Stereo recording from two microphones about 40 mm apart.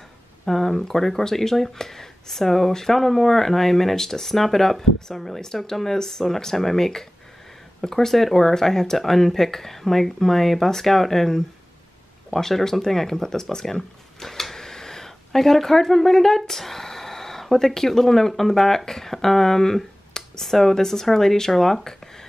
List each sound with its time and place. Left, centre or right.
0.5 s speech: centre